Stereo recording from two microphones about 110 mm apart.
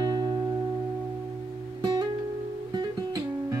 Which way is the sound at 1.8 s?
35° right (ahead or behind).